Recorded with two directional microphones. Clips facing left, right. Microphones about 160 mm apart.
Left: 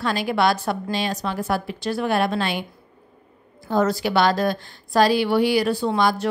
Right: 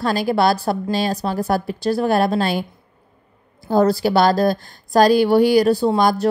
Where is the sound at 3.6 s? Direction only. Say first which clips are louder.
Right 5 dB; 35° right (ahead or behind).